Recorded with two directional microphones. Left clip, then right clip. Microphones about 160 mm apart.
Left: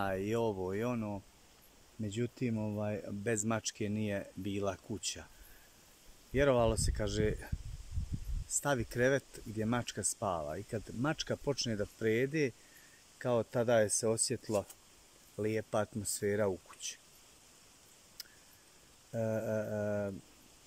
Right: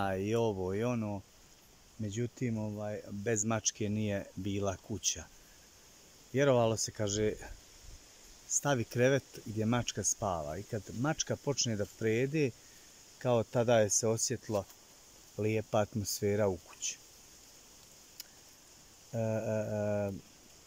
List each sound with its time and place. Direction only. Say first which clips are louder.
0.0 s speech: right 2 dB; centre (ahead or behind)
6.3 s speech: right 1 dB; centre (ahead or behind)
19.1 s speech: right 1 dB; centre (ahead or behind)